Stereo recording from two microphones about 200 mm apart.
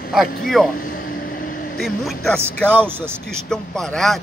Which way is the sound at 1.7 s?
Centre (ahead or behind).